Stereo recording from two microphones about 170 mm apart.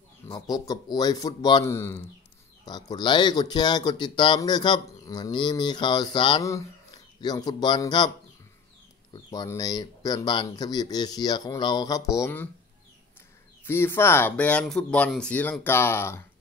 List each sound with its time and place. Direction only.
0.3 s speech: 25° left (ahead or behind)
9.1 s speech: 25° left (ahead or behind)
13.7 s speech: 15° left (ahead or behind)